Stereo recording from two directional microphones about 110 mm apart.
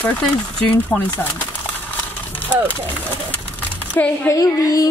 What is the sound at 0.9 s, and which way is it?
Speech, 5° left (ahead or behind).